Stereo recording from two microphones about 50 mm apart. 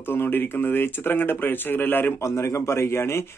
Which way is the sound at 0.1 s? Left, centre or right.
Left.